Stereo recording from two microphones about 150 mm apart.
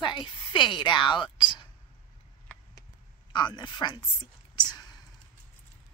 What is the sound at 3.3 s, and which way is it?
Speech, 30° left (ahead or behind).